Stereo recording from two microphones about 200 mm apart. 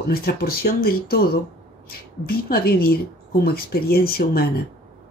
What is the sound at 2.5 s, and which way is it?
A woman's voice, 50° left (ahead or behind).